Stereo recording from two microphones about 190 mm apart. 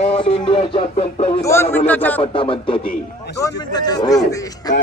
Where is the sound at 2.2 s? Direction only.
30° left (ahead or behind).